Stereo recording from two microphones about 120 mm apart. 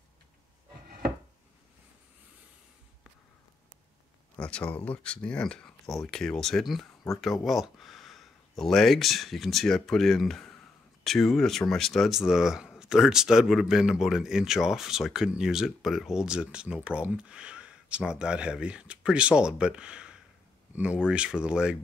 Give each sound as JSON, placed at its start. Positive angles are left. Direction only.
{"t": 4.4, "sound": "speech", "side_deg": 10}